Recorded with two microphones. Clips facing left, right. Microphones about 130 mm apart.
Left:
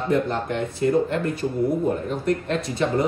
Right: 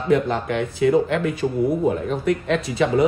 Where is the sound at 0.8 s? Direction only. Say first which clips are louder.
Right 4 dB; 90° right.